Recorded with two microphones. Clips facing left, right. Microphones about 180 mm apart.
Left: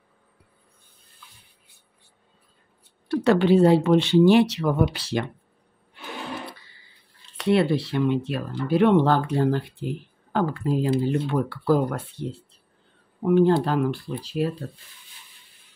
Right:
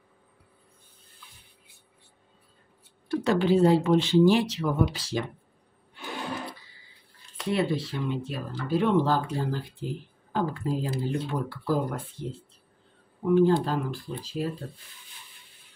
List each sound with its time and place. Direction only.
3.1 s speech: 70° left (ahead or behind)
7.3 s speech: 70° left (ahead or behind)